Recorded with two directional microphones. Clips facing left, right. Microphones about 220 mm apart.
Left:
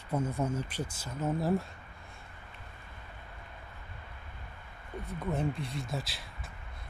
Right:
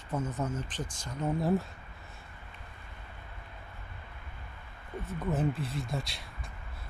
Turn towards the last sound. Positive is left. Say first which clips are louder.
# right 1 dB
turn(degrees=0)  # may be behind; listen again after turning